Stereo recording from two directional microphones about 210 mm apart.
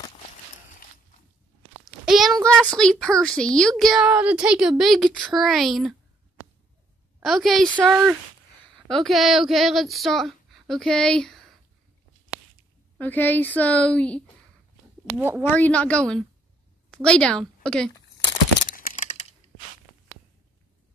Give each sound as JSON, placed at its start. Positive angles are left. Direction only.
{"t": 2.0, "sound": "a sound", "side_deg": 0}
{"t": 2.4, "sound": "a woman's voice", "side_deg": 5}
{"t": 7.2, "sound": "a woman's voice", "side_deg": 0}
{"t": 12.9, "sound": "speech", "side_deg": 10}
{"t": 15.0, "sound": "speech", "side_deg": -10}
{"t": 15.4, "sound": "a woman's voice", "side_deg": 10}
{"t": 18.6, "sound": "a sound", "side_deg": 40}